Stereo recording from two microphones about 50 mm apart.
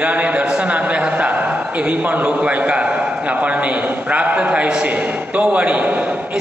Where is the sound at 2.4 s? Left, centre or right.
Right.